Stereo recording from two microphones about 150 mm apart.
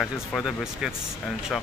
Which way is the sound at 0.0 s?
Centre (ahead or behind).